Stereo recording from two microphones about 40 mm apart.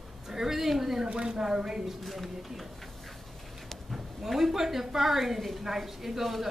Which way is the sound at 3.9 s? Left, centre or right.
Centre.